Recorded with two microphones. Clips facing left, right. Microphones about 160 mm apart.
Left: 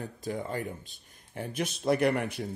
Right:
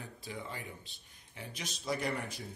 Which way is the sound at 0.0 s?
45° left (ahead or behind).